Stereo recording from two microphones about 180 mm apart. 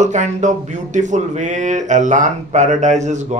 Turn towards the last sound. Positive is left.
turn(degrees=-40)  # may be behind; listen again after turning